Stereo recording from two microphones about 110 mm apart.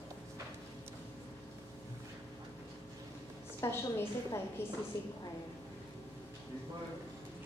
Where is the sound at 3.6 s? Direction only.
25° left (ahead or behind).